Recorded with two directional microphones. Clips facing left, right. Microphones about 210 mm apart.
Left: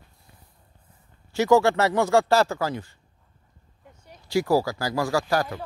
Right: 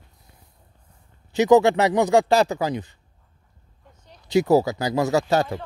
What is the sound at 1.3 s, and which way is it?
Speech, 20° right (ahead or behind).